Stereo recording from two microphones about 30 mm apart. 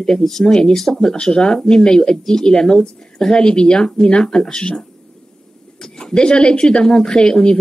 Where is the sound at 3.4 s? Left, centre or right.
Left.